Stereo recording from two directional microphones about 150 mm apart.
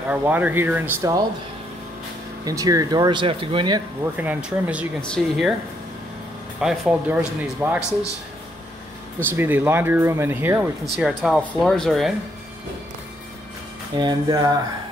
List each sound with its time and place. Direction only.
0.1 s speech: 10° right (ahead or behind)
2.4 s speech: 25° right (ahead or behind)
4.0 s speech: 10° right (ahead or behind)
5.0 s speech: 5° left (ahead or behind)
6.6 s speech: 5° right (ahead or behind)
9.2 s speech: 15° right (ahead or behind)
11.0 s speech: centre (ahead or behind)
13.9 s speech: 25° right (ahead or behind)